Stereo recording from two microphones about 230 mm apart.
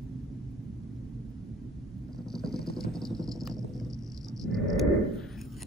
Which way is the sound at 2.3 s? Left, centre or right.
Centre.